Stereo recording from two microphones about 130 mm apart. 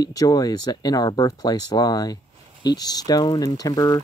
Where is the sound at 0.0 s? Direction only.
30° left (ahead or behind).